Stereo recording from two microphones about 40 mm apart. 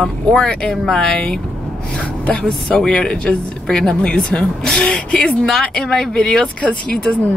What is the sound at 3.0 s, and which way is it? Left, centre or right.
Speech, centre.